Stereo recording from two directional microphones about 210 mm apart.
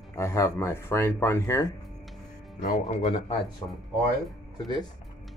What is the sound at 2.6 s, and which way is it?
Speech, 35° left (ahead or behind).